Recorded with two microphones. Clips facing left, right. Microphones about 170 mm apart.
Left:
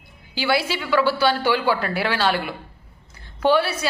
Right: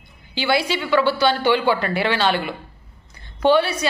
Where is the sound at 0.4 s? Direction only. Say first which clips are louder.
Right 2 dB; 5° left (ahead or behind).